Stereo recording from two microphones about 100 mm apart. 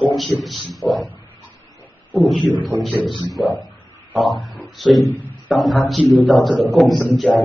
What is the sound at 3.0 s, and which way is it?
A man's voice, centre (ahead or behind).